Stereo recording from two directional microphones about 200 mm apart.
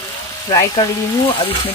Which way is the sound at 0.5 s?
25° left (ahead or behind).